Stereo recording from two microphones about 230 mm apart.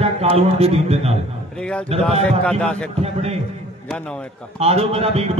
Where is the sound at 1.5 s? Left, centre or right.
Centre.